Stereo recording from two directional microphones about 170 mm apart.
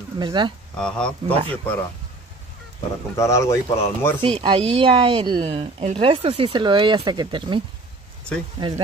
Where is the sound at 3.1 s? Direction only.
15° left (ahead or behind).